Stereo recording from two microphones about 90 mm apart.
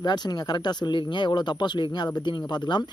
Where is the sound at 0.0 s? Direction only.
50° left (ahead or behind).